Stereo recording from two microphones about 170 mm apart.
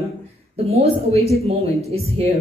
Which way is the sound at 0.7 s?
35° right (ahead or behind).